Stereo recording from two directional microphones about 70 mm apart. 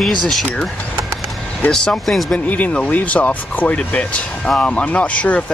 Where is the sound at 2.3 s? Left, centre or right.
Centre.